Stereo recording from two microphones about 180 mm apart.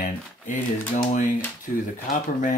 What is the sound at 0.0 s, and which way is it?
Speech, 45° left (ahead or behind).